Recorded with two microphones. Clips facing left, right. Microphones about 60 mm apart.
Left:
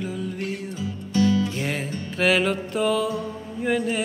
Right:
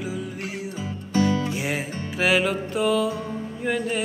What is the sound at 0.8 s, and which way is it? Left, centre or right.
Music, right.